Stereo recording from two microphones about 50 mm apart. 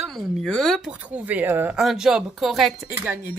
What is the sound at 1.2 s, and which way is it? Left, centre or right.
Speech, right.